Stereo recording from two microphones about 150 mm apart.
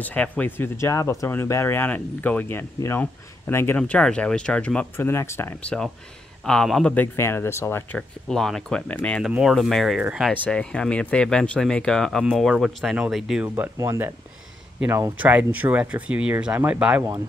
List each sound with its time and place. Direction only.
0.0 s speech: 10° left (ahead or behind)
5.6 s speech: 5° left (ahead or behind)
8.3 s speech: 5° left (ahead or behind)
9.2 s speech: 5° right (ahead or behind)
10.3 s speech: 10° left (ahead or behind)
13.7 s speech: 20° right (ahead or behind)